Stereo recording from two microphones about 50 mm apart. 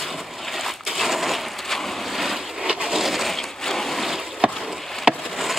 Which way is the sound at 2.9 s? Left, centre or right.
Centre.